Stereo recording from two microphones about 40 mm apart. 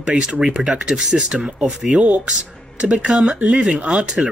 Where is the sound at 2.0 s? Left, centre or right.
Right.